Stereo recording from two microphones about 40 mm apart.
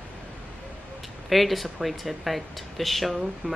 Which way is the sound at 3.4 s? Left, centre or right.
Left.